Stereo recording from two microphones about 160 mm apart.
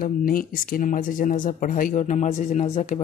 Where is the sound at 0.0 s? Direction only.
60° left (ahead or behind).